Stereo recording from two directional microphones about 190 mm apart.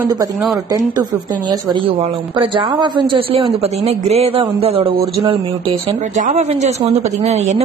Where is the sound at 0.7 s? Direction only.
20° right (ahead or behind).